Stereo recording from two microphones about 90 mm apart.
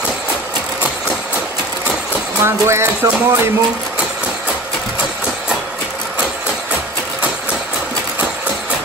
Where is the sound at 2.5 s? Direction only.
30° right (ahead or behind).